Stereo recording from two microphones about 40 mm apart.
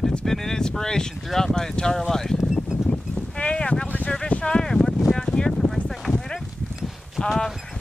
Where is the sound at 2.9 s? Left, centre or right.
Left.